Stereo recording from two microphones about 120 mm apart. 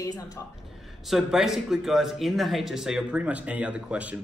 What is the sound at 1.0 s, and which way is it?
Speech, centre (ahead or behind).